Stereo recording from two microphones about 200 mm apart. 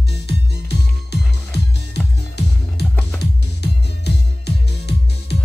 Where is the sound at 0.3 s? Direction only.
55° left (ahead or behind).